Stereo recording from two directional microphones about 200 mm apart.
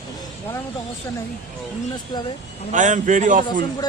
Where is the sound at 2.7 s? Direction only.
40° right (ahead or behind).